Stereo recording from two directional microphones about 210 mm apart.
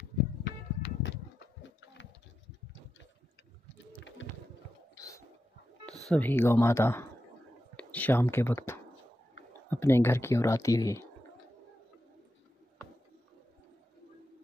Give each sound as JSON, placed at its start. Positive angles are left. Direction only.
{"t": 0.4, "sound": "music", "side_deg": 50}
{"t": 4.9, "sound": "a sound", "side_deg": 15}
{"t": 6.0, "sound": "speech", "side_deg": 10}